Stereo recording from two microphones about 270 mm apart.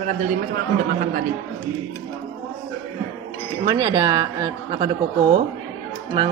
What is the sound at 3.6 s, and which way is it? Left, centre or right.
A woman's voice, centre.